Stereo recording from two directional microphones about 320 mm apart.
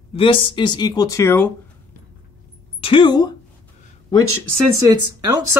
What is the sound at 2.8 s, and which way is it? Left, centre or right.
Speech, centre.